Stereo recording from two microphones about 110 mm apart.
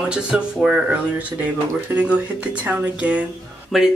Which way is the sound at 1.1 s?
15° right (ahead or behind).